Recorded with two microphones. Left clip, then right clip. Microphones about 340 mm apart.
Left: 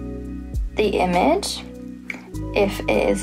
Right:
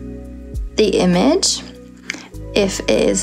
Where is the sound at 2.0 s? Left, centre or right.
Right.